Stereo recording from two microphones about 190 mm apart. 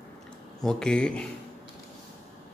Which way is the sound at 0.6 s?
5° left (ahead or behind).